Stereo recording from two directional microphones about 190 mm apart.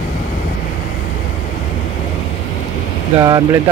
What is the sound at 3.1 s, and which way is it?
Speech, 20° right (ahead or behind).